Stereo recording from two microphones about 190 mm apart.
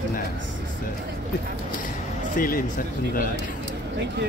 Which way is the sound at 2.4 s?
45° left (ahead or behind).